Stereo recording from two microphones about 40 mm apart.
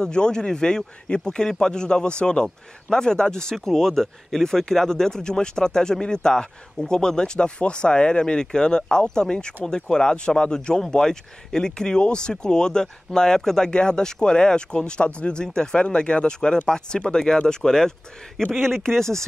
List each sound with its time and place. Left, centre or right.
0.0 s speech: left